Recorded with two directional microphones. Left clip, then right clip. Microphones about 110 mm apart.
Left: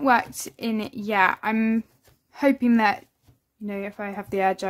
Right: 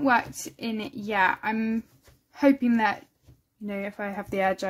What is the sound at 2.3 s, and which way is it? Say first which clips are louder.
Speech: left 1 dB; 50° left (ahead or behind).